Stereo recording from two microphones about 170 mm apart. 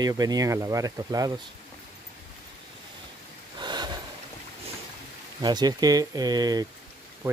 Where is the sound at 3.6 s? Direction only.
25° right (ahead or behind).